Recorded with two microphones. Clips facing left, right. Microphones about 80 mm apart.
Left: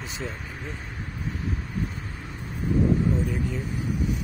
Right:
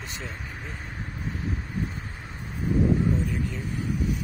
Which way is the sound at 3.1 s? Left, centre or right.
Centre.